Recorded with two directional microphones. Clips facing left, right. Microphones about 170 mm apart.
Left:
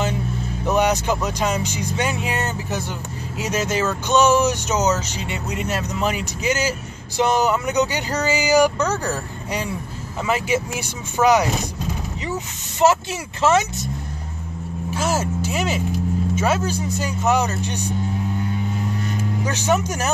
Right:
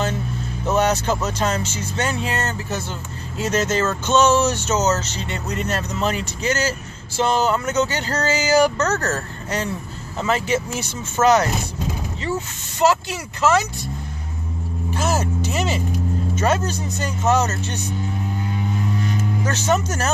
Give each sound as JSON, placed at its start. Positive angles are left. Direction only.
{"t": 0.7, "sound": "speech", "side_deg": 15}
{"t": 12.8, "sound": "speech", "side_deg": 20}
{"t": 14.9, "sound": "speech", "side_deg": 10}
{"t": 19.4, "sound": "speech", "side_deg": 10}